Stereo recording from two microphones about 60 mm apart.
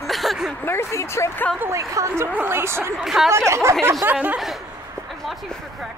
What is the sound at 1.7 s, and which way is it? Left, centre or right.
Speech, right.